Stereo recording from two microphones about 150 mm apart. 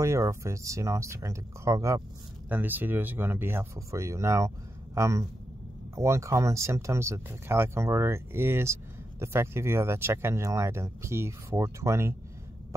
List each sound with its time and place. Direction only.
0.0 s speech: 20° right (ahead or behind)